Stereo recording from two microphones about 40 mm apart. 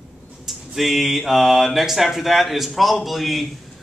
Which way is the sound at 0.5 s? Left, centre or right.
Centre.